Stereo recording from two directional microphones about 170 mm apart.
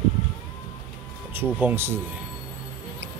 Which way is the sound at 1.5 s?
10° right (ahead or behind).